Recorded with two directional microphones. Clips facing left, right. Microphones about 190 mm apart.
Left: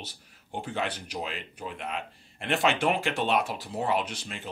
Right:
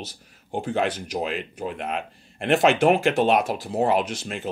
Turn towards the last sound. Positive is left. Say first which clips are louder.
# right 6 dB
turn(degrees=-45)  # may be behind; listen again after turning